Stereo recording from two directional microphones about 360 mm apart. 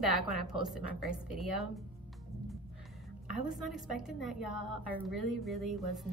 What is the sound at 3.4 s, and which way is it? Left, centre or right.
A woman's voice, centre.